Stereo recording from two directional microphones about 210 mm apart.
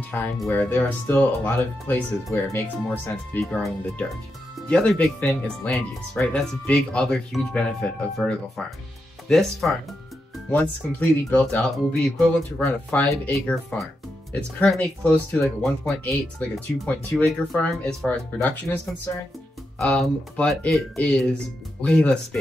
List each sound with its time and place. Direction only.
0.1 s speech: 10° left (ahead or behind)
19.8 s speech: 5° left (ahead or behind)